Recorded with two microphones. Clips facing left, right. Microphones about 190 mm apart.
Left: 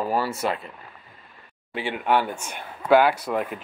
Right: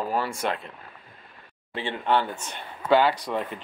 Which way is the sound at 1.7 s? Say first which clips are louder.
Left 2 dB; 10° left (ahead or behind).